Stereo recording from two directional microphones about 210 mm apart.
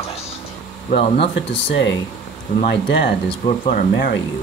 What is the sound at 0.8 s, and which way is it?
Speech, 30° left (ahead or behind).